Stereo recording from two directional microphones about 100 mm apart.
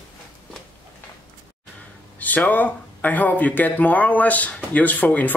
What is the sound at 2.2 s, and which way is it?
Speech, 15° left (ahead or behind).